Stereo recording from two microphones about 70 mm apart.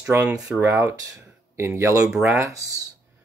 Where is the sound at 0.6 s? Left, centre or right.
Right.